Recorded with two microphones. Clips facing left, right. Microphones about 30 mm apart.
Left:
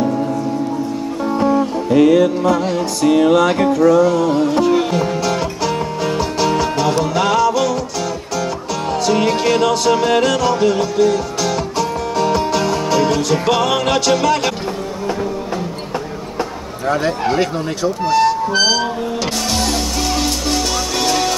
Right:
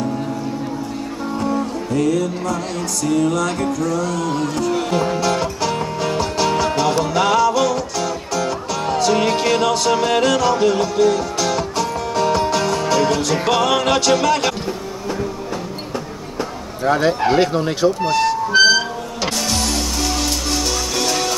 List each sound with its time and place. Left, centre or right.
1.2 s music: centre
4.9 s music: centre
16.8 s speech: centre
18.0 s speech: centre
18.5 s music: centre